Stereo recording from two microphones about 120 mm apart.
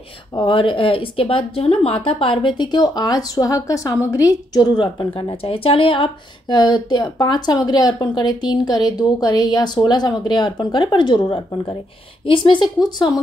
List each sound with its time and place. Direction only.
0.3 s a woman's voice: 40° left (ahead or behind)
12.8 s a woman's voice: 35° left (ahead or behind)